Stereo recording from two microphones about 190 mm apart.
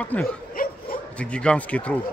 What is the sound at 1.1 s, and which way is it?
Speech, 5° left (ahead or behind).